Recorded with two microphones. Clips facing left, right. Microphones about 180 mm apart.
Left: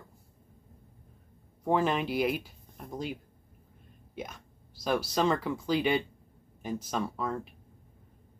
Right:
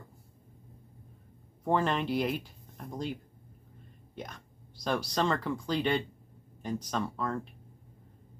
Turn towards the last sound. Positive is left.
turn(degrees=5)  # may be behind; listen again after turning